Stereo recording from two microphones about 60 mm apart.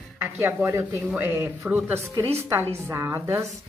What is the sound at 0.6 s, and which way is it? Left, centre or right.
Speech, right.